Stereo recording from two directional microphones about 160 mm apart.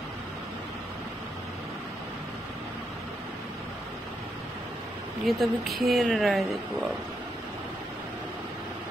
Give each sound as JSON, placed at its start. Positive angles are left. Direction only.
{"t": 5.2, "sound": "a woman's voice", "side_deg": 0}